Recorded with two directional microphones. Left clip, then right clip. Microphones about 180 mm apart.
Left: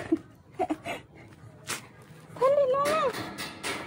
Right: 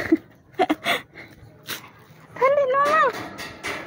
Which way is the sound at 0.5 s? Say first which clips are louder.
Right 10 dB; 65° right (ahead or behind).